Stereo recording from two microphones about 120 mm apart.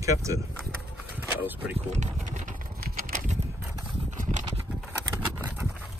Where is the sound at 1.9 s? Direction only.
75° right (ahead or behind); by 2.5 s 90° right.